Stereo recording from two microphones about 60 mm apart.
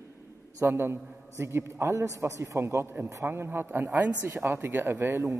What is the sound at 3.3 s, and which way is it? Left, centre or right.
A woman's voice, right.